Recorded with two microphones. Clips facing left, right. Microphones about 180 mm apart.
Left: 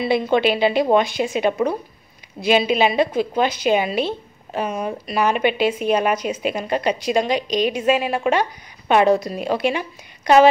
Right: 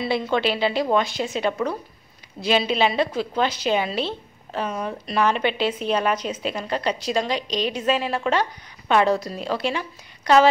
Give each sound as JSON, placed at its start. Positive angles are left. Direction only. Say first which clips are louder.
{"t": 0.0, "sound": "a woman's voice", "louder": "left 5 dB", "side_deg": 15}